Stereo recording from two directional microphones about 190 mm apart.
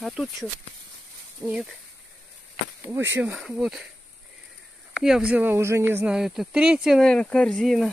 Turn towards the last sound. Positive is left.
turn(degrees=0)  # may be behind; listen again after turning